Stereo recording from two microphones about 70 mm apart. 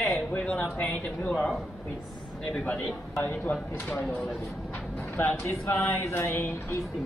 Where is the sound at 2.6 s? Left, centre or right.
Centre.